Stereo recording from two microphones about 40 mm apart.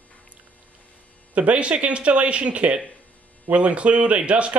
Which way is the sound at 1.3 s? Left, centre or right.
Right.